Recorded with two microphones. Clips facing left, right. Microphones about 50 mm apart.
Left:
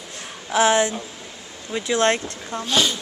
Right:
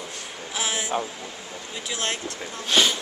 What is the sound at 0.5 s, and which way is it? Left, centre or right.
Speech, left.